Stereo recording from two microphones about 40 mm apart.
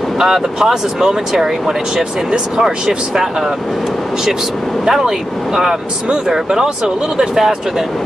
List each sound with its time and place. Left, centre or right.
0.2 s speech: centre
4.8 s speech: centre